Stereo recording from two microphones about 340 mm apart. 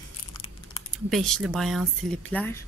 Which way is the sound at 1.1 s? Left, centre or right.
Centre.